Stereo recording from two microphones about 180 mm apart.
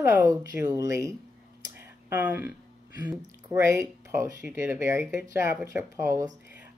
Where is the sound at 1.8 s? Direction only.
10° right (ahead or behind).